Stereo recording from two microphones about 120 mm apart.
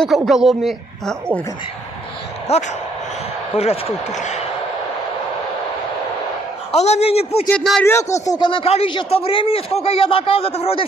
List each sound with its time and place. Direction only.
0.0 s a woman's voice: centre (ahead or behind)
2.5 s a man's voice: 65° left (ahead or behind)
6.7 s a man's voice: 65° left (ahead or behind)
7.5 s a woman's voice: centre (ahead or behind)
7.8 s speech: 20° left (ahead or behind)
8.3 s a man's voice: 45° left (ahead or behind)